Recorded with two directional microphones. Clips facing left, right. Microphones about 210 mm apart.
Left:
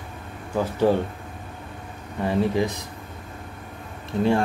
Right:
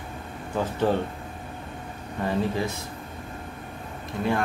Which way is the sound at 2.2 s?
15° left (ahead or behind).